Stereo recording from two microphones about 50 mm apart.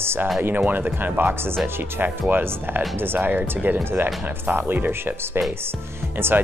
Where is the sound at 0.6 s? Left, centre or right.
Right.